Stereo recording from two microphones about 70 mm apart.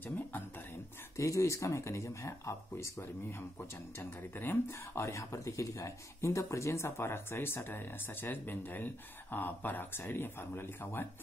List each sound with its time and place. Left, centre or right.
1.1 s speech: left